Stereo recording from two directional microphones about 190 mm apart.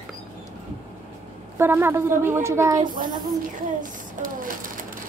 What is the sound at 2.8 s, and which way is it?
Child singing, 45° right (ahead or behind).